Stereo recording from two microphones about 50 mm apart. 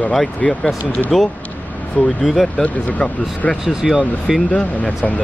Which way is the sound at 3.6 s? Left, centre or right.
Centre.